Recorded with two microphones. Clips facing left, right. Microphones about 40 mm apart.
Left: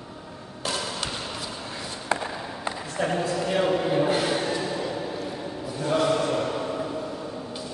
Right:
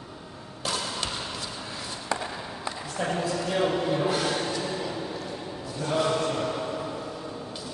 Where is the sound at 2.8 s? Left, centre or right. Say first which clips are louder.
Left 3 dB; centre.